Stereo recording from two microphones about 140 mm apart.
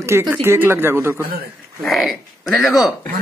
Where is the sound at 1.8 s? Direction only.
Centre (ahead or behind).